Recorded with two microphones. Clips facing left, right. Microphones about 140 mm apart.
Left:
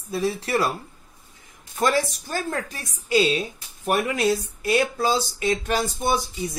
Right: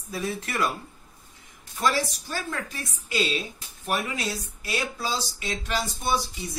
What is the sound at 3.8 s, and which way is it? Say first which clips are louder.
Speech: left 7 dB; 55° left (ahead or behind).